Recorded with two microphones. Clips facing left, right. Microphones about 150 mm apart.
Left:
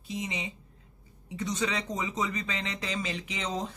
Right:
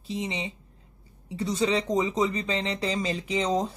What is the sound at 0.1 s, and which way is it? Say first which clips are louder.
A woman's voice: right 4 dB; 30° right (ahead or behind).